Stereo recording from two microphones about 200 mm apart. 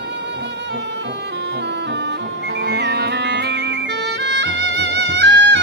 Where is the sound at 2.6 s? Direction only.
60° right (ahead or behind).